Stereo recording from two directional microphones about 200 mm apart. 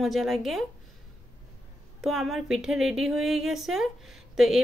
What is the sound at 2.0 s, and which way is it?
A woman's voice, centre (ahead or behind).